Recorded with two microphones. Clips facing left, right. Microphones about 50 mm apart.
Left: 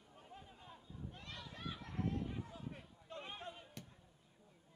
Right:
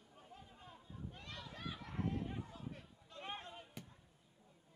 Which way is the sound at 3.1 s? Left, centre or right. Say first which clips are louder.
Left 3 dB; left.